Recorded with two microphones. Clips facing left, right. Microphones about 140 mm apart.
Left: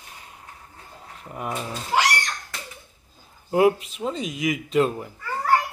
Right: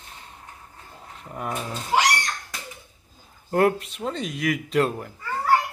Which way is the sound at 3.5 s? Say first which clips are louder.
Left 2 dB; centre (ahead or behind).